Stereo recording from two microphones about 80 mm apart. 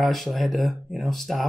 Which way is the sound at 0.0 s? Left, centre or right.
Centre.